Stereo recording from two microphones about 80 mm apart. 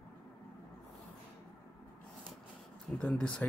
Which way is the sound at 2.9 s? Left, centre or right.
Centre.